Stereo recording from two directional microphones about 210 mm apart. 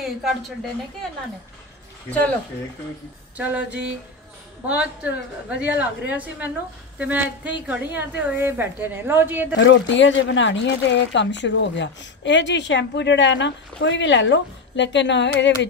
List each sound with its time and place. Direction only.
2.0 s speech: 5° left (ahead or behind)
3.3 s a woman's voice: 5° right (ahead or behind)
9.6 s speech: 60° left (ahead or behind)